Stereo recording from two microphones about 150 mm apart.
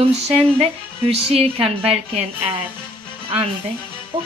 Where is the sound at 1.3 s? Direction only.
40° right (ahead or behind).